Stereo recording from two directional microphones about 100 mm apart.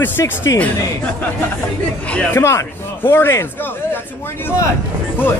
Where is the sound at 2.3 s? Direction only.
30° left (ahead or behind).